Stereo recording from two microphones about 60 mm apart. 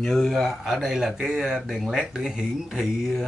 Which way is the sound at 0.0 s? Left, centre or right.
Centre.